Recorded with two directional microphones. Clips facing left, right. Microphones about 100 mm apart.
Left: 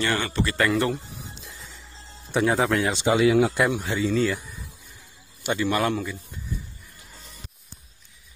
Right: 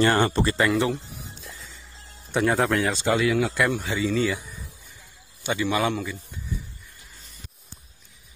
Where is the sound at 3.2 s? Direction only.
25° left (ahead or behind).